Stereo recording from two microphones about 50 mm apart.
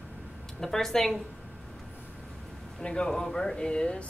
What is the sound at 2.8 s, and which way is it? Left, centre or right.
A woman's voice, centre.